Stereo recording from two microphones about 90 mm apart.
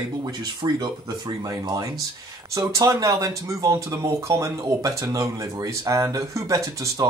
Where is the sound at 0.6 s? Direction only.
50° right (ahead or behind).